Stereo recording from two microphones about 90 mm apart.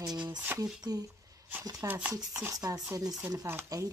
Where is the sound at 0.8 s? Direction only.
45° right (ahead or behind).